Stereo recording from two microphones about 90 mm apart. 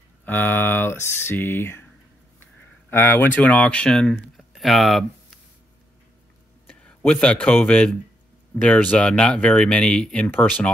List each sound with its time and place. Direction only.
0.2 s speech: 20° left (ahead or behind); by 5.4 s centre (ahead or behind)
6.7 s speech: 10° left (ahead or behind)